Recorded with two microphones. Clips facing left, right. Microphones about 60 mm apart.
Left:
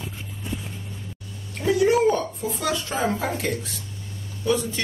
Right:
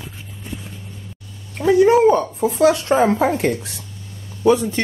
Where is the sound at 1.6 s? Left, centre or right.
Right.